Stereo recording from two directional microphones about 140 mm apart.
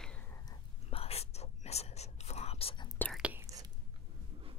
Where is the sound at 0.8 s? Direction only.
45° left (ahead or behind).